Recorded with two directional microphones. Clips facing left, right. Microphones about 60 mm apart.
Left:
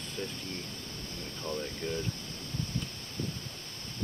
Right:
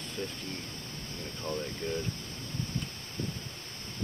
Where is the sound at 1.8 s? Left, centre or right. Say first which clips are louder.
Right 1 dB; centre.